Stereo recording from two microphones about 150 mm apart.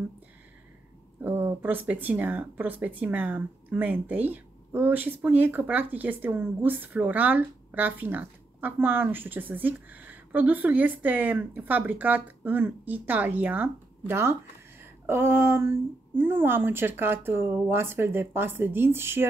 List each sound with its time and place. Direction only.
1.2 s speech: 15° right (ahead or behind)